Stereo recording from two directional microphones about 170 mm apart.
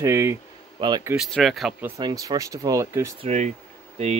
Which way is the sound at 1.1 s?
Centre (ahead or behind).